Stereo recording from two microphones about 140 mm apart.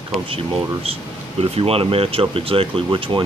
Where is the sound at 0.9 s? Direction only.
40° right (ahead or behind).